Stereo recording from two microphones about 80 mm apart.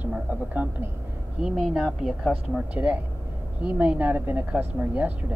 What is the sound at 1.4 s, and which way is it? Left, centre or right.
Speech, centre.